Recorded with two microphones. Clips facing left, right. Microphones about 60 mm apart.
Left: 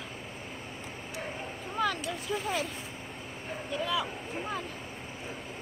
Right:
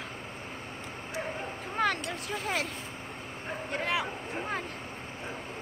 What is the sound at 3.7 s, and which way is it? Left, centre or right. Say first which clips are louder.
Speech: even; right.